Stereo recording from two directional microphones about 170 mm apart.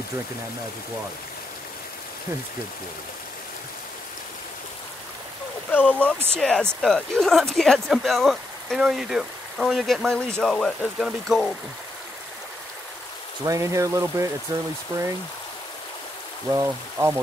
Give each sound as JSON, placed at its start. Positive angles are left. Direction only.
{"t": 5.7, "sound": "speech", "side_deg": 10}
{"t": 13.5, "sound": "speech", "side_deg": -20}
{"t": 16.4, "sound": "speech", "side_deg": -15}